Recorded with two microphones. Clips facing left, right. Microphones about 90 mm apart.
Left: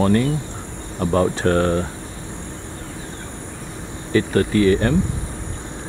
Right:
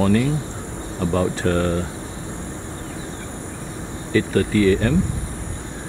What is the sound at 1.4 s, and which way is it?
Speech, 50° left (ahead or behind).